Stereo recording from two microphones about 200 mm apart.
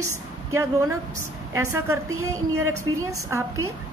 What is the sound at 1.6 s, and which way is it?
Speech, 15° right (ahead or behind).